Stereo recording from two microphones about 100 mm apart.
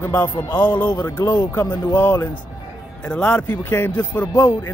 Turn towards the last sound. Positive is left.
turn(degrees=20)  # may be behind; listen again after turning